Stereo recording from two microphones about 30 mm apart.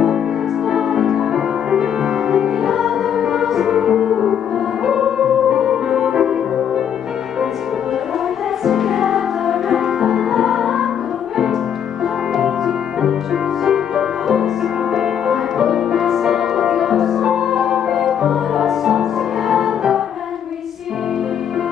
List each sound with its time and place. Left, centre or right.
0.7 s music: centre
8.6 s music: centre
12.0 s music: centre